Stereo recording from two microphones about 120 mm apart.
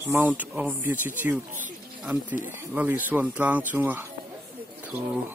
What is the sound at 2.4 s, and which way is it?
Speech, 15° right (ahead or behind).